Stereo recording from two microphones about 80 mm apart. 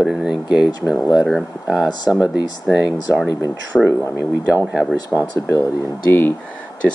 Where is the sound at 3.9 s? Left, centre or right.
Left.